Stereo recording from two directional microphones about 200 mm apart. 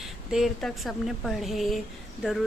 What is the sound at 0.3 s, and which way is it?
A woman's voice, centre (ahead or behind).